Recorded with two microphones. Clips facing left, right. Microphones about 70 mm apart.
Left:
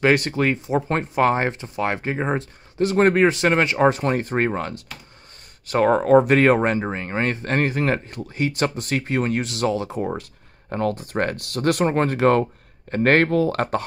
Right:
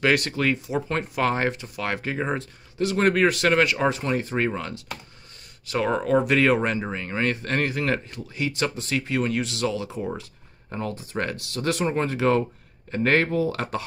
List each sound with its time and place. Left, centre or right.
0.0 s speech: left